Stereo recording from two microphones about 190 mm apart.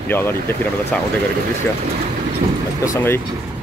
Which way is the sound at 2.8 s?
15° left (ahead or behind).